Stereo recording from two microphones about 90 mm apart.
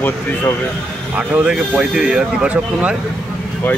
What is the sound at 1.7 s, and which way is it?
Speech, 5° right (ahead or behind).